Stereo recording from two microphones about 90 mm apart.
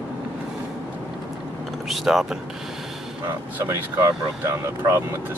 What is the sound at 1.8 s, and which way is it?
Vehicle, 5° right (ahead or behind).